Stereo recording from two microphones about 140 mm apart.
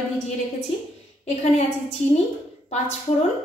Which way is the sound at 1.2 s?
55° left (ahead or behind).